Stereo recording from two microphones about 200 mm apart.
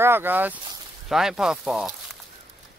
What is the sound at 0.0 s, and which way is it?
Speech, 10° right (ahead or behind).